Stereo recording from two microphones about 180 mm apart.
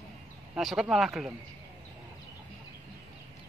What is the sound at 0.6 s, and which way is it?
Speech, centre (ahead or behind).